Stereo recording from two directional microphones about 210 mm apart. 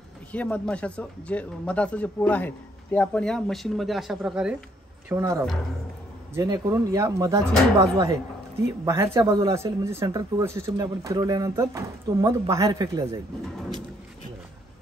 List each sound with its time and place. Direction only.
0.3 s speech: 5° left (ahead or behind)
5.1 s speech: 15° right (ahead or behind)